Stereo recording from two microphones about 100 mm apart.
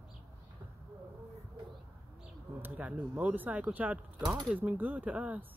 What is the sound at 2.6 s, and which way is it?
Speech, 15° right (ahead or behind).